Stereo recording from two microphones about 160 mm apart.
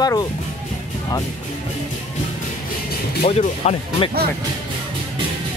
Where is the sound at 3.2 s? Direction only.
40° left (ahead or behind).